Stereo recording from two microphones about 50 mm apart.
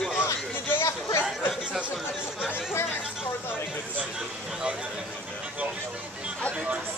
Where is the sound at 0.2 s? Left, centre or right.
Left.